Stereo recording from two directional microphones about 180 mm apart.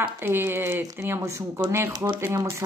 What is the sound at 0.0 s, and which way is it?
Speech, 10° right (ahead or behind).